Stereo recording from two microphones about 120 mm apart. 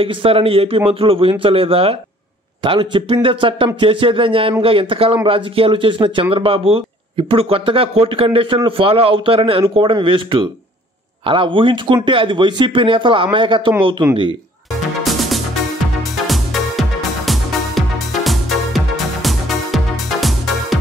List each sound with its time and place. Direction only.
0.0 s speech: 50° right (ahead or behind)
15.0 s music: centre (ahead or behind)